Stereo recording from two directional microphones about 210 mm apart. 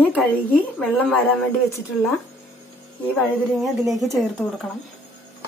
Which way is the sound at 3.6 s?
Centre (ahead or behind).